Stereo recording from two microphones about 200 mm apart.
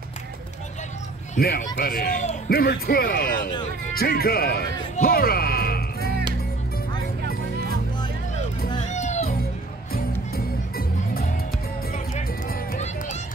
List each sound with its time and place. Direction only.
1.4 s a man's voice: 50° left (ahead or behind)
4.9 s music: 50° left (ahead or behind)
8.7 s music: 35° left (ahead or behind)
9.9 s music: 50° left (ahead or behind)
11.9 s music: 35° left (ahead or behind)
12.4 s run: 40° left (ahead or behind)